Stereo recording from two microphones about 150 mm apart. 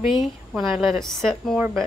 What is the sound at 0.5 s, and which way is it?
Speech, centre (ahead or behind).